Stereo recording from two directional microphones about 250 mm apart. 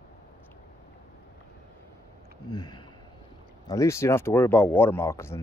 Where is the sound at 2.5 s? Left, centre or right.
Centre.